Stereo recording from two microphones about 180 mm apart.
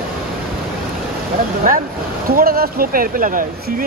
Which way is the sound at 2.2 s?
55° right (ahead or behind).